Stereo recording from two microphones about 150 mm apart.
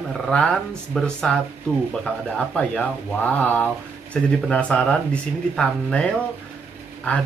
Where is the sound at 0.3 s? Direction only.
10° left (ahead or behind).